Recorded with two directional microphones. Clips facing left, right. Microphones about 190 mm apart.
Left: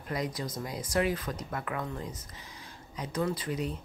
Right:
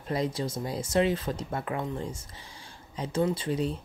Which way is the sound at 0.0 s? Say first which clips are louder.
Right 4 dB; 30° right (ahead or behind).